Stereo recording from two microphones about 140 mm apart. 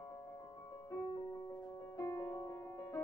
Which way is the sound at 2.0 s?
25° left (ahead or behind).